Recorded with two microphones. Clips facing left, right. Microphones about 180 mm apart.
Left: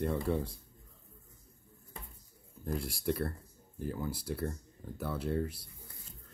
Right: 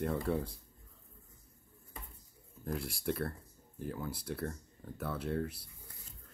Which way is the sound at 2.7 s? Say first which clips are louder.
Left 2 dB; centre (ahead or behind).